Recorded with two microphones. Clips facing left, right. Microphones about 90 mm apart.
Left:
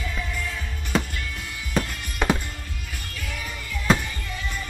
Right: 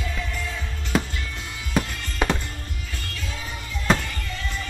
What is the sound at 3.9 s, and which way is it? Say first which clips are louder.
Music: even; 15° left (ahead or behind).